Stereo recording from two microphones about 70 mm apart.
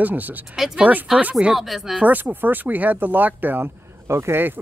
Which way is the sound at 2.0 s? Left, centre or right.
Right.